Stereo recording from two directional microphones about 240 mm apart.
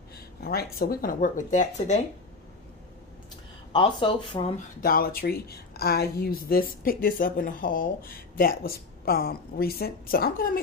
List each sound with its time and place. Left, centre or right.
0.4 s a woman's voice: left
3.7 s speech: centre
4.8 s a woman's voice: left